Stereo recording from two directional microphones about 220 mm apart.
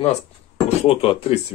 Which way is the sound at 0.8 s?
25° left (ahead or behind).